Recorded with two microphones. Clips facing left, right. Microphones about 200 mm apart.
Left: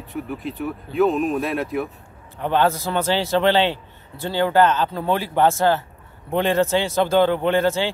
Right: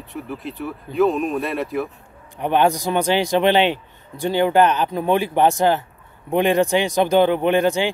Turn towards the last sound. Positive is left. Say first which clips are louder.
# right 2 dB
turn(degrees=-15)  # may be behind; listen again after turning